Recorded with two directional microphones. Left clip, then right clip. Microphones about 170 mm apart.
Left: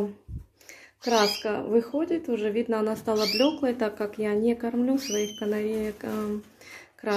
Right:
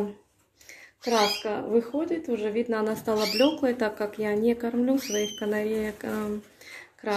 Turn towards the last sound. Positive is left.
turn(degrees=20)  # may be behind; listen again after turning